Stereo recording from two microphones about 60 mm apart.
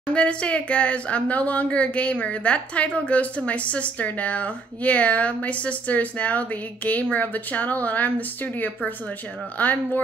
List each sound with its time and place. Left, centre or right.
0.1 s speech: centre
9.6 s speech: left